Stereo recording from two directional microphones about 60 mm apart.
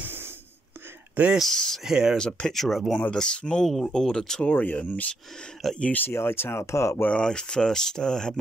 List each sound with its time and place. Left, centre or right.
0.0 s a sound: right
1.4 s speech: centre
1.9 s speech: centre
2.1 s speech: centre
3.1 s speech: centre
6.0 s speech: left
7.1 s speech: centre